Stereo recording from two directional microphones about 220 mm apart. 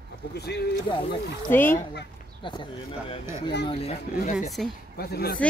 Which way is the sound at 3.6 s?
30° left (ahead or behind).